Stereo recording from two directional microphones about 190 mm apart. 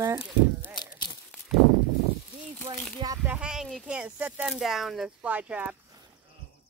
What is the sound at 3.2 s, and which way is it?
Speech, 5° right (ahead or behind).